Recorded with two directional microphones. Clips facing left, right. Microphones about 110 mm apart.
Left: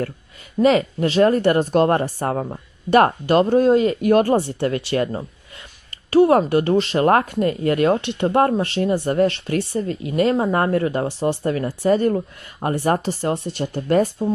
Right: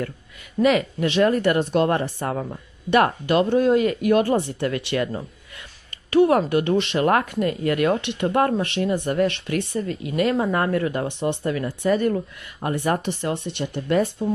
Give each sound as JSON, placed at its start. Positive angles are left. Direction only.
{"t": 0.6, "sound": "speech", "side_deg": 35}
{"t": 4.1, "sound": "speech", "side_deg": 40}